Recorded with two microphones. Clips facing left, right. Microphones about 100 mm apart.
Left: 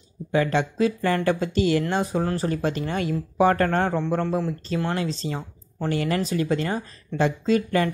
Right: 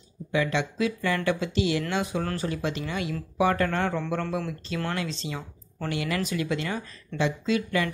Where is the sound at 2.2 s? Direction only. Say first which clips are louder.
Left 5 dB; 30° left (ahead or behind).